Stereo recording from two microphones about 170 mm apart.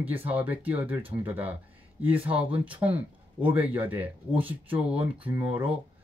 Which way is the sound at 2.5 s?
10° right (ahead or behind).